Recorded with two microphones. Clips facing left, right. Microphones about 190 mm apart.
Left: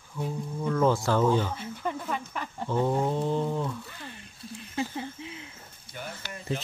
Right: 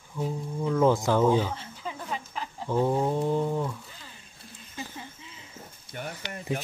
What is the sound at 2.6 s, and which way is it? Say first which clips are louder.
Speech: right 1 dB; 10° right (ahead or behind).